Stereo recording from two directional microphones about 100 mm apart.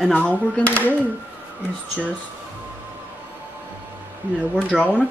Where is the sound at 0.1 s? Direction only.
15° left (ahead or behind).